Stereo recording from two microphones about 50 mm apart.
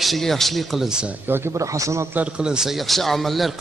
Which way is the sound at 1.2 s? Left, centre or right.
Right.